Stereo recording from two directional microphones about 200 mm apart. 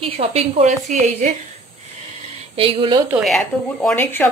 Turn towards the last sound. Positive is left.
turn(degrees=5)  # may be behind; listen again after turning